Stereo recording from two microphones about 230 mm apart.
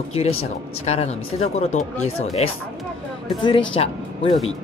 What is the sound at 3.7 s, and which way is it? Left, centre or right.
Speech, left.